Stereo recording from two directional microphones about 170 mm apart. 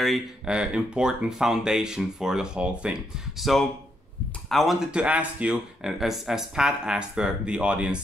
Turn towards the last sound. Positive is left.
turn(degrees=-5)  # may be behind; listen again after turning